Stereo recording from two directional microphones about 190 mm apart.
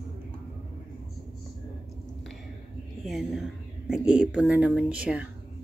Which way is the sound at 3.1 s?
Centre (ahead or behind).